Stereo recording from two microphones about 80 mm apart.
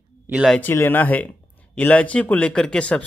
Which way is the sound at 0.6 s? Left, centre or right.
Left.